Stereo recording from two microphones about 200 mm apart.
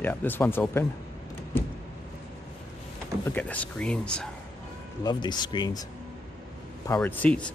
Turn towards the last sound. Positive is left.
turn(degrees=5)  # may be behind; listen again after turning